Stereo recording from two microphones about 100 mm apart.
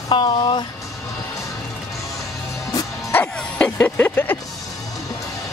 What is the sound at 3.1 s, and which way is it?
Music, 15° left (ahead or behind).